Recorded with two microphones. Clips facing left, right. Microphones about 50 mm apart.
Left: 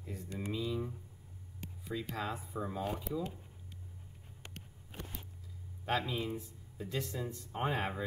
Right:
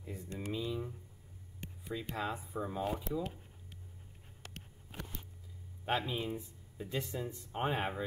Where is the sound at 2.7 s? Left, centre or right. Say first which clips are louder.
Right 2 dB; centre.